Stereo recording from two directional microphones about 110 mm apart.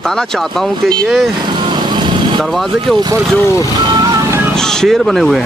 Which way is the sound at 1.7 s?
45° right (ahead or behind).